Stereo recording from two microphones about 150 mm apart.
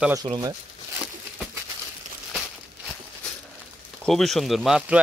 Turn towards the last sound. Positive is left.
turn(degrees=-5)  # may be behind; listen again after turning